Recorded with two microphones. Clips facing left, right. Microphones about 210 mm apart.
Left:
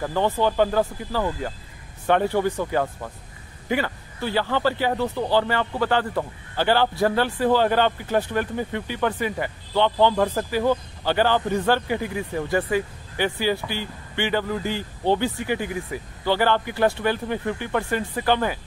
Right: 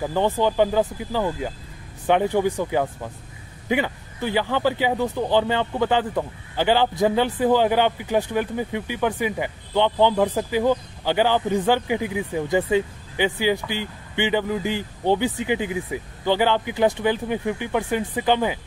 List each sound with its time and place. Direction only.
0.0 s speech: 15° right (ahead or behind)